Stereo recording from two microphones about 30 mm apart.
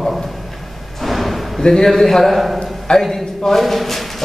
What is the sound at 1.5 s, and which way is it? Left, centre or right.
Speech, centre.